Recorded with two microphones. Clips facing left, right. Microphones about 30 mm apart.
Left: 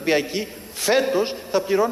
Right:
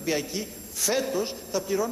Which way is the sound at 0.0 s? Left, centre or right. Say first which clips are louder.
Left 7 dB; left.